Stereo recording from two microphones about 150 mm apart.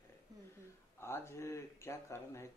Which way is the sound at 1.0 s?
15° left (ahead or behind).